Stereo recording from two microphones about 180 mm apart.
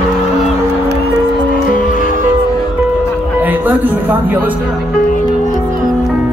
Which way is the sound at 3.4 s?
10° right (ahead or behind).